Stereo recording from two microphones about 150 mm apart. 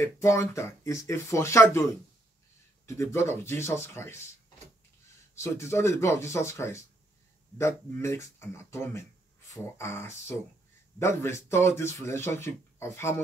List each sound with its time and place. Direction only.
0.0 s speech: 20° left (ahead or behind)
2.9 s speech: 20° left (ahead or behind)
5.3 s speech: 20° left (ahead or behind)